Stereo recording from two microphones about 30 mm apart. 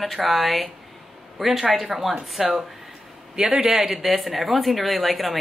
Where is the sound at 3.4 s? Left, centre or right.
Right.